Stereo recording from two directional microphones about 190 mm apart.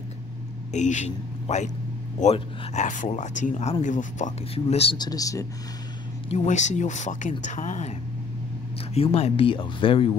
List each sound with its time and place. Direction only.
0.7 s speech: 40° left (ahead or behind)
4.9 s speech: 20° left (ahead or behind)
6.2 s speech: 35° left (ahead or behind)
8.9 s speech: 30° left (ahead or behind)